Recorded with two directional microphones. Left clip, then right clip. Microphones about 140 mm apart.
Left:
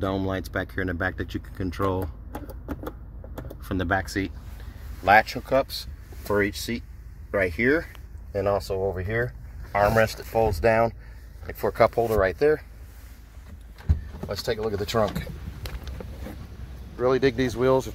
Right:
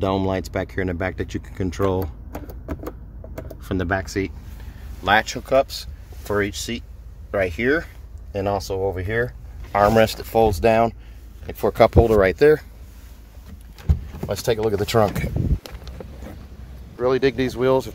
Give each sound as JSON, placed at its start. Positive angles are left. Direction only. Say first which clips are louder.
{"t": 0.0, "sound": "speech", "louder": "right 6 dB", "side_deg": 0}
{"t": 3.4, "sound": "speech", "louder": "right 2 dB", "side_deg": 0}
{"t": 9.7, "sound": "a sound", "louder": "right 5 dB", "side_deg": -10}
{"t": 9.9, "sound": "speech", "louder": "right 5 dB", "side_deg": -20}
{"t": 10.6, "sound": "speech", "louder": "right 4 dB", "side_deg": -10}
{"t": 11.9, "sound": "speech", "louder": "right 6 dB", "side_deg": -30}
{"t": 14.2, "sound": "speech", "louder": "right 6 dB", "side_deg": -30}
{"t": 17.0, "sound": "speech", "louder": "right 3 dB", "side_deg": 0}